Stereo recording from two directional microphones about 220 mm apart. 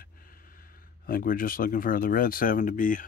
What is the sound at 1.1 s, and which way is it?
Speech, 40° left (ahead or behind).